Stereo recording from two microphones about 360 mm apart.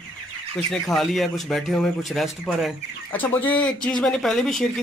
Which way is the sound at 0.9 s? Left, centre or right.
Centre.